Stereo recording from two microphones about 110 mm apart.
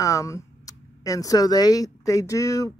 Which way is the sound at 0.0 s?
30° left (ahead or behind).